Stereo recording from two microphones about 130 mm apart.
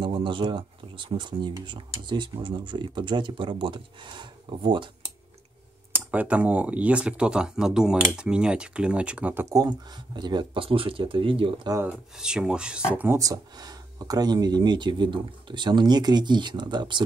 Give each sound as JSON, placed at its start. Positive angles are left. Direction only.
{"t": 0.0, "sound": "speech", "side_deg": -40}
{"t": 5.9, "sound": "speech", "side_deg": -10}
{"t": 9.6, "sound": "speech", "side_deg": -35}
{"t": 11.7, "sound": "speech", "side_deg": -15}
{"t": 13.2, "sound": "speech", "side_deg": -30}